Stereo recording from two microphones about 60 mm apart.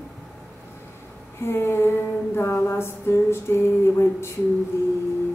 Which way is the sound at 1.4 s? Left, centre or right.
Left.